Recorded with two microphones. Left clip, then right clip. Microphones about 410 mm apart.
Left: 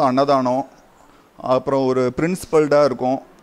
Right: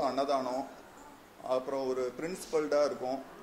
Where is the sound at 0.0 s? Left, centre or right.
Left.